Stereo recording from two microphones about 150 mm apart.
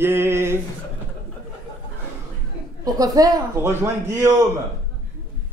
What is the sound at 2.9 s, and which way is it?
A man's voice, 25° right (ahead or behind).